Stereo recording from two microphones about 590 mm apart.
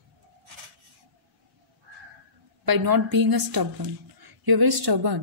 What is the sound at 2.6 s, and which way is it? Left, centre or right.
Speech, right.